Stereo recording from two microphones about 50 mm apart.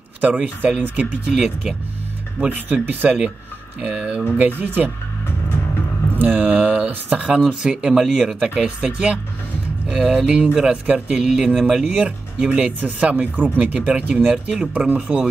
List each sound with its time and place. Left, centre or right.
0.2 s speech: right
2.5 s speech: right
3.8 s speech: centre
4.4 s speech: right
6.1 s speech: right; by 8.4 s centre
8.6 s speech: right
11.1 s speech: centre
14.9 s speech: right